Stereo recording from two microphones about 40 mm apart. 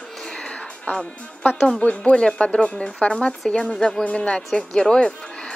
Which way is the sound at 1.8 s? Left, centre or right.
Left.